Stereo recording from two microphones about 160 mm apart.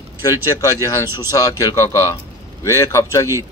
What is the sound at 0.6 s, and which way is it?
A man's voice, 20° left (ahead or behind).